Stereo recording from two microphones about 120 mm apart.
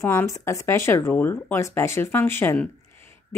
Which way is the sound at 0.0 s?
20° left (ahead or behind).